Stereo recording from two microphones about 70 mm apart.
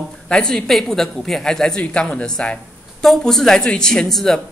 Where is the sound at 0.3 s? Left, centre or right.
Centre.